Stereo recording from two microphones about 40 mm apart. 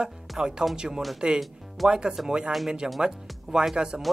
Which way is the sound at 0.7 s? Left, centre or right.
Centre.